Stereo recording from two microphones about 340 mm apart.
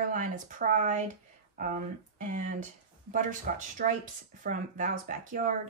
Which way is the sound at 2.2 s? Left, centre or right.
Right.